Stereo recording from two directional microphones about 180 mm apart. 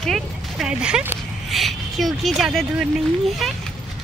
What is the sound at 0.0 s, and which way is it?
Speech, centre (ahead or behind).